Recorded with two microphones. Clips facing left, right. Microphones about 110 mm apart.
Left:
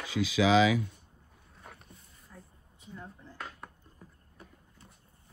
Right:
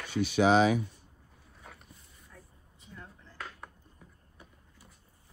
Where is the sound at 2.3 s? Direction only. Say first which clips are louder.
Left 3 dB; 10° left (ahead or behind).